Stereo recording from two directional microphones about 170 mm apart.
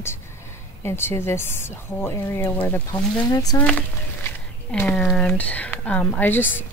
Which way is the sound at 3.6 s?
5° left (ahead or behind).